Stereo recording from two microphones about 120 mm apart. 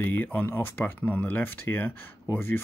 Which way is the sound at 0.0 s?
15° left (ahead or behind).